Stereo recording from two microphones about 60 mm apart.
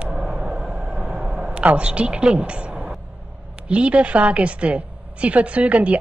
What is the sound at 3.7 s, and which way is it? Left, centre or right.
A woman's voice, right.